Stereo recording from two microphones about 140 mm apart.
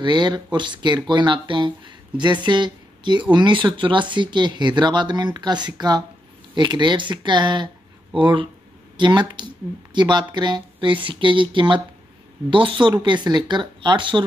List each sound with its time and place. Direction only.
0.0 s speech: 30° right (ahead or behind)